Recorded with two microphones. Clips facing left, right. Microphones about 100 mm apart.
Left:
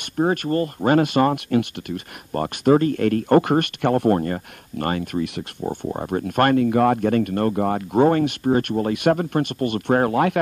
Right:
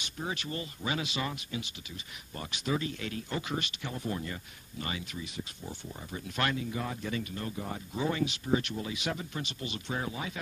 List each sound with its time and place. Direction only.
0.0 s speech: 55° left (ahead or behind)